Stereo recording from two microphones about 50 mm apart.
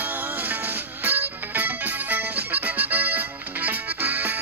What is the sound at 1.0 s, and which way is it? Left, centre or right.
Music, right.